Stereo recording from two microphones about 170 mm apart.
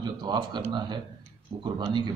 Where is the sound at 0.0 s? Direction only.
25° right (ahead or behind).